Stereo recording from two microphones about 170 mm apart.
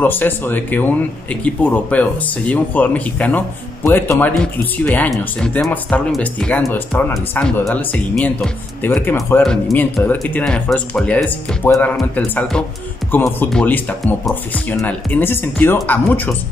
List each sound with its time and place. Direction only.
0.0 s speech: 10° left (ahead or behind)